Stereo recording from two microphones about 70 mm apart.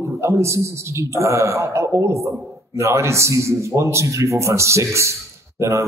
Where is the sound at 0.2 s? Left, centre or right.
Right.